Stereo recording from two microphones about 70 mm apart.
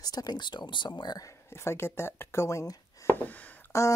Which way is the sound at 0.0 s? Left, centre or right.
Left.